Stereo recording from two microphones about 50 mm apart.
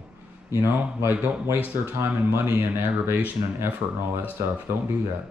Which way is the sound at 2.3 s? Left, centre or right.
Right.